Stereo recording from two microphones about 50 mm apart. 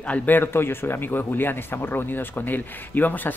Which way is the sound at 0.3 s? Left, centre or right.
Left.